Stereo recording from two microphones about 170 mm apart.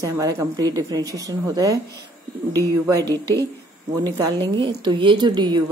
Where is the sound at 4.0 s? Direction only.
20° right (ahead or behind).